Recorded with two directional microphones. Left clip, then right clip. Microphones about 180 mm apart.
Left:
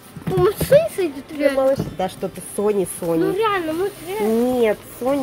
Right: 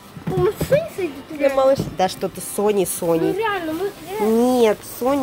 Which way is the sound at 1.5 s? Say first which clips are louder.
Right 2 dB; 20° right (ahead or behind).